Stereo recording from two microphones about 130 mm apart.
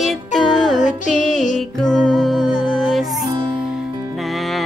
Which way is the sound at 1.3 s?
Centre (ahead or behind).